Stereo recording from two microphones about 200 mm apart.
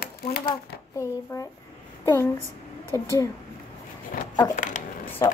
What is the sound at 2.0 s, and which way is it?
Speech, 10° left (ahead or behind).